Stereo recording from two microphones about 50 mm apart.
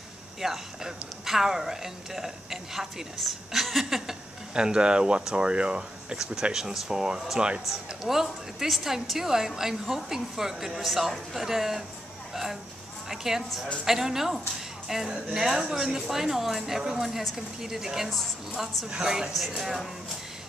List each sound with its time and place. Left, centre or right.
0.4 s a woman's voice: centre
4.6 s a woman's voice: centre
7.3 s speech: centre
7.6 s a woman's voice: centre
13.1 s a woman's voice: centre
19.3 s a woman's voice: centre